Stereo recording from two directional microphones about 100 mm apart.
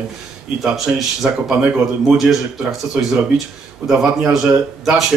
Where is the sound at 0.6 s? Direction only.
5° right (ahead or behind).